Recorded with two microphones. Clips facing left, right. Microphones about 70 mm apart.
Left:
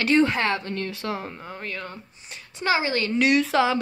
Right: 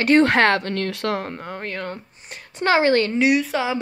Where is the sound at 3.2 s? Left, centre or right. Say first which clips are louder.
Right 2 dB; centre.